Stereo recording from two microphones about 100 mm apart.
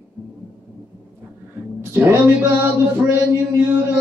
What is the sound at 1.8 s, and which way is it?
A man's voice, 25° right (ahead or behind).